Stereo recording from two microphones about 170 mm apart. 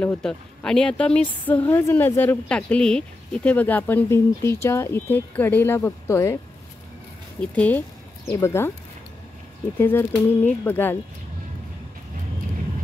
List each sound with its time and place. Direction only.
0.0 s a woman's voice: 5° left (ahead or behind)
7.3 s a woman's voice: 10° left (ahead or behind)
9.8 s a woman's voice: 15° left (ahead or behind)